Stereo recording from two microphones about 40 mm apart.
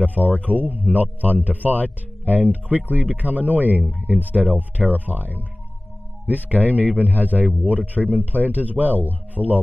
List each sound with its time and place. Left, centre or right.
0.0 s speech: right